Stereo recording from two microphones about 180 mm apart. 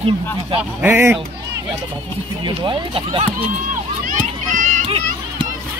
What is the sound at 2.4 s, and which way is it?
Speech, 25° right (ahead or behind).